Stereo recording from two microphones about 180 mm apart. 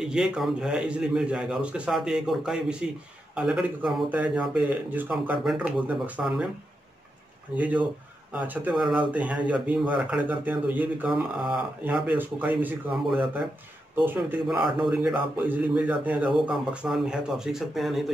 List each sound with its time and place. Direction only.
0.0 s a man's voice: 5° right (ahead or behind)
7.5 s speech: 10° right (ahead or behind)
11.8 s a man's voice: 10° right (ahead or behind)